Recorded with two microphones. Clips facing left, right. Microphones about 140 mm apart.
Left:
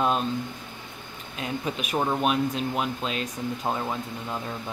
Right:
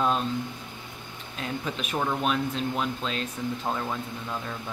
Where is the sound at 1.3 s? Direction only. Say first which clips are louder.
Left 2 dB; 10° left (ahead or behind).